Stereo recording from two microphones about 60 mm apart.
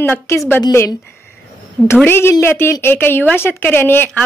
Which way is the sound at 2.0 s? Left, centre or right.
Left.